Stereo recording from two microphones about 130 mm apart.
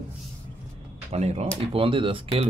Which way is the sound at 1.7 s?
45° right (ahead or behind).